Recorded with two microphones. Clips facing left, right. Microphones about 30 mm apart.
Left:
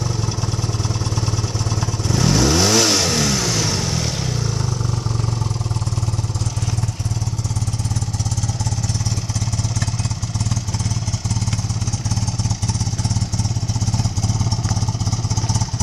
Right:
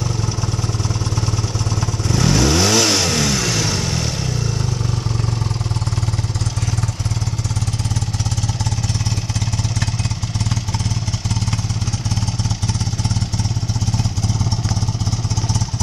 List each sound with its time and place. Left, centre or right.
1.8 s vehicle: centre